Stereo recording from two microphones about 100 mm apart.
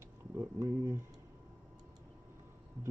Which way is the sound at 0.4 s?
30° right (ahead or behind).